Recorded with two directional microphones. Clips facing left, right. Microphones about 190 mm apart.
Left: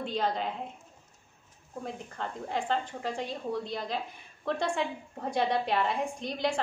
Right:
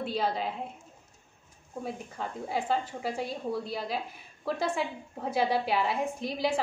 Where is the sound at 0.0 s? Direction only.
5° right (ahead or behind).